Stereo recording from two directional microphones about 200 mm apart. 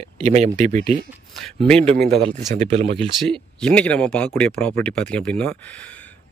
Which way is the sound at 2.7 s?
30° right (ahead or behind).